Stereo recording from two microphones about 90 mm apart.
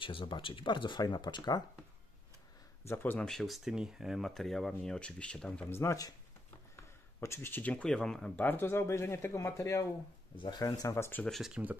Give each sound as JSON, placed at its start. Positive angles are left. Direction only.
{"t": 0.0, "sound": "speech", "side_deg": 70}
{"t": 2.8, "sound": "speech", "side_deg": 25}
{"t": 3.3, "sound": "speech", "side_deg": 0}
{"t": 5.7, "sound": "speech", "side_deg": 30}
{"t": 7.2, "sound": "speech", "side_deg": 25}
{"t": 8.4, "sound": "speech", "side_deg": 20}
{"t": 11.0, "sound": "speech", "side_deg": 25}
{"t": 11.2, "sound": "speech", "side_deg": 0}
{"t": 11.5, "sound": "speech", "side_deg": -20}